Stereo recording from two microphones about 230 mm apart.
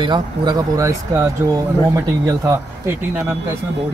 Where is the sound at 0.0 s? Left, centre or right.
Centre.